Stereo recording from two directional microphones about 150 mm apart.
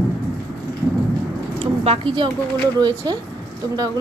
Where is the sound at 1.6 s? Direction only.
40° right (ahead or behind).